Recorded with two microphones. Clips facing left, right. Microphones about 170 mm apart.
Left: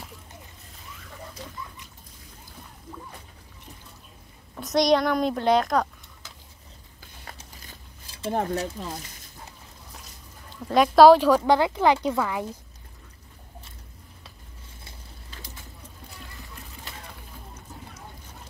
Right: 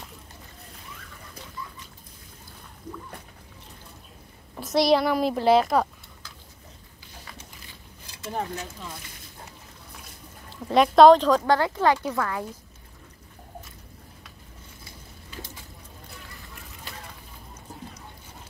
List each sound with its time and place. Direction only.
4.6 s a woman's voice: 5° right (ahead or behind)
8.1 s a sound: 30° left (ahead or behind)
8.4 s speech: 40° left (ahead or behind)
10.7 s speech: centre (ahead or behind)